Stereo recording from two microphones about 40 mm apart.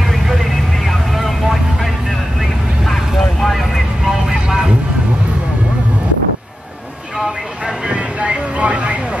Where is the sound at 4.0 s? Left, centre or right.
Centre.